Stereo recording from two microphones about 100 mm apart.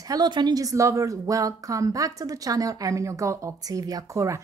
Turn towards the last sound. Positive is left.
turn(degrees=-35)  # may be behind; listen again after turning